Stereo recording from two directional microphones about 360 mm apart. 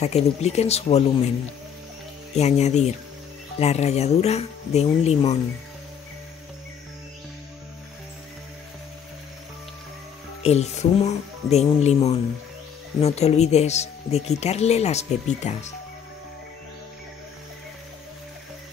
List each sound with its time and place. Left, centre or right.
0.0 s speech: centre
2.3 s speech: centre
10.4 s speech: centre